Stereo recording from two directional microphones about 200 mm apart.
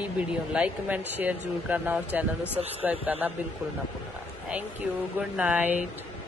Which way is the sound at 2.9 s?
10° right (ahead or behind).